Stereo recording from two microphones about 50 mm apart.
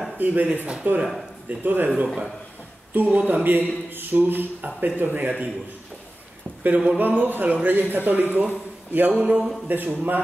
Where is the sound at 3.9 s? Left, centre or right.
Right.